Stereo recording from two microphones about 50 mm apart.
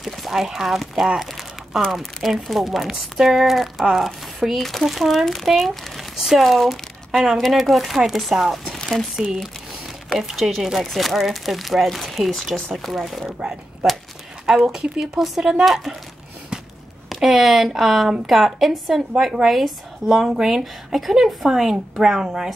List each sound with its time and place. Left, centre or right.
0.0 s a woman's voice: centre
6.4 s a woman's voice: centre
8.7 s a sound: centre
10.1 s a woman's voice: centre
14.4 s a woman's voice: centre
17.1 s a woman's voice: centre